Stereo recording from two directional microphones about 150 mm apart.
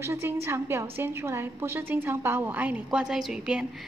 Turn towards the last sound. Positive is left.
turn(degrees=-5)  # may be behind; listen again after turning